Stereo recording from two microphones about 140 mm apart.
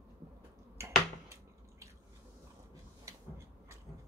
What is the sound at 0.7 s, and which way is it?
Finger snapping, 20° right (ahead or behind).